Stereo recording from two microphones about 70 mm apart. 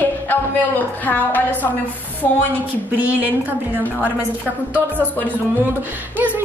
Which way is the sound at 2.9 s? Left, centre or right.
Right.